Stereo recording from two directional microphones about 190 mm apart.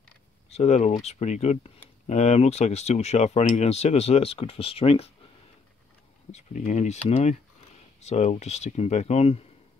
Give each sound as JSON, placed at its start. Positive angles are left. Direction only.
{"t": 0.5, "sound": "speech", "side_deg": 35}
{"t": 6.3, "sound": "speech", "side_deg": 40}